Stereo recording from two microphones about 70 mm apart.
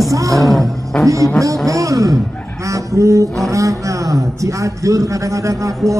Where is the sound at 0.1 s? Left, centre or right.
Right.